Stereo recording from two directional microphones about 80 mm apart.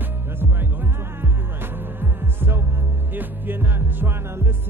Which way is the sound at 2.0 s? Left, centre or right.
Right.